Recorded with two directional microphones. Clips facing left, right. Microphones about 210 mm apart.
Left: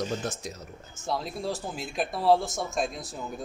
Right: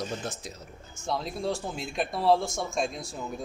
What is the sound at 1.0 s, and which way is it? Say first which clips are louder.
A man's voice: right 1 dB; centre (ahead or behind).